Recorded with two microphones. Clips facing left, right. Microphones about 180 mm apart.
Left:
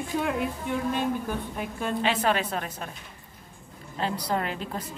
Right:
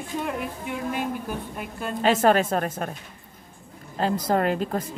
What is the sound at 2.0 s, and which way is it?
Speech, 45° right (ahead or behind).